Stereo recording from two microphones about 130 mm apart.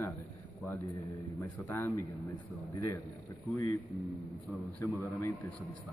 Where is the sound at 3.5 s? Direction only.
25° left (ahead or behind).